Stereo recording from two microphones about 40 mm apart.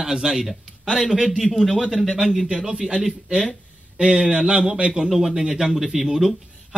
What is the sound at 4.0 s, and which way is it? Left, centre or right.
Speech, centre.